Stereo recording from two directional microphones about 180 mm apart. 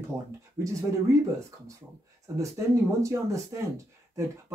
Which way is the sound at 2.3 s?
15° right (ahead or behind).